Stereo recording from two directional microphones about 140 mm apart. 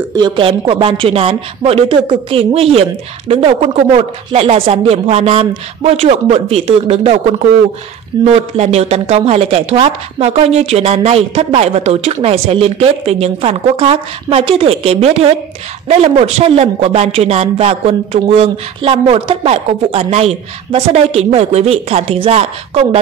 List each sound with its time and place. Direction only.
0.1 s a woman's voice: 35° right (ahead or behind)